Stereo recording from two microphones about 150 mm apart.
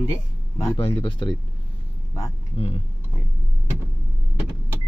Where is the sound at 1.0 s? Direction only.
30° left (ahead or behind).